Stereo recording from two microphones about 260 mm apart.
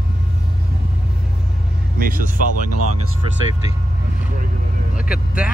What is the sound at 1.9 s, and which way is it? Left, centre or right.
Music, right.